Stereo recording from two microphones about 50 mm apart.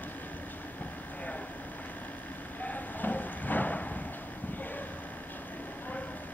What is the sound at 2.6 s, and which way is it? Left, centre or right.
Clip-clop, left.